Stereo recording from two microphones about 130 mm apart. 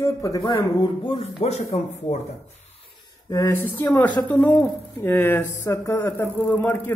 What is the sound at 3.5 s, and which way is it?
Speech, 15° left (ahead or behind).